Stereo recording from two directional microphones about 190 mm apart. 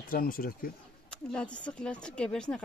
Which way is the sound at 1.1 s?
5° left (ahead or behind).